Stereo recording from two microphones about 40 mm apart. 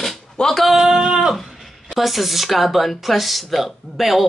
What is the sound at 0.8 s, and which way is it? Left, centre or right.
Speech, centre.